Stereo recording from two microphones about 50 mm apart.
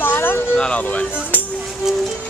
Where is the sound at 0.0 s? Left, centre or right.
Left.